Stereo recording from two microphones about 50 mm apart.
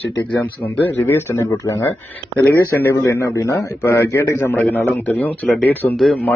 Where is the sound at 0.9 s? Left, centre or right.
Left.